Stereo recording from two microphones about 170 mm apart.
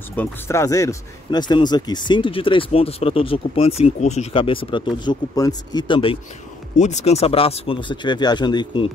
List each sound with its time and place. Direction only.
0.1 s speech: 15° left (ahead or behind); by 6.1 s 30° left (ahead or behind)
6.8 s speech: 45° left (ahead or behind)